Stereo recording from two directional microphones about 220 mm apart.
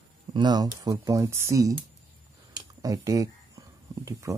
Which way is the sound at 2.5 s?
15° right (ahead or behind).